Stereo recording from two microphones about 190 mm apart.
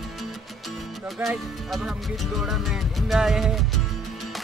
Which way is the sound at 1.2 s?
Centre (ahead or behind).